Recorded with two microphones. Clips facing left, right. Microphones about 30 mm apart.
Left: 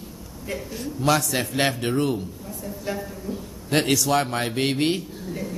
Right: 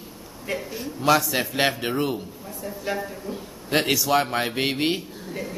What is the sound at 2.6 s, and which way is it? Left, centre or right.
A man's voice, centre.